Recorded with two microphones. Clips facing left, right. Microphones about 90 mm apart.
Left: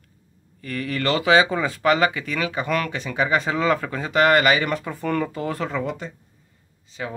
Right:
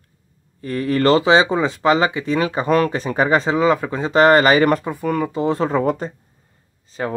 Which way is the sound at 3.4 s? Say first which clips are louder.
Right 5 dB; 25° right (ahead or behind).